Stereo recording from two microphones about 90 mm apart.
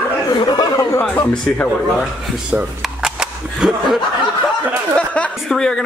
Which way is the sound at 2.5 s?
5° right (ahead or behind).